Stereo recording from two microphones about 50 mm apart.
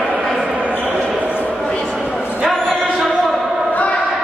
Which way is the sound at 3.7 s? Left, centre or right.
Left.